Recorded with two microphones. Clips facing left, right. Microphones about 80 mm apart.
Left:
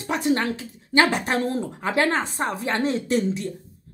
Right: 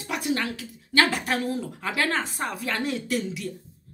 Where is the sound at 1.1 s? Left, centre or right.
Left.